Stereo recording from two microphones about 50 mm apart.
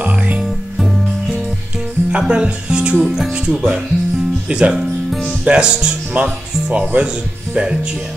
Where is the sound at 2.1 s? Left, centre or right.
Centre.